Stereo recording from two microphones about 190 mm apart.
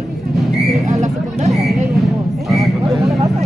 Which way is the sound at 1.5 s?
Centre (ahead or behind).